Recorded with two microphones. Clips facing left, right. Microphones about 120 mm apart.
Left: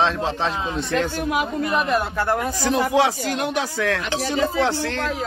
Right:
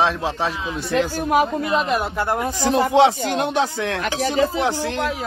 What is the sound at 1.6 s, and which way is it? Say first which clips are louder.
Speech: right 1 dB; 20° right (ahead or behind).